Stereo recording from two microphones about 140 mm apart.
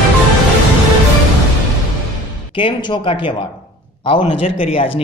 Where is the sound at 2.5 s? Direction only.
35° left (ahead or behind).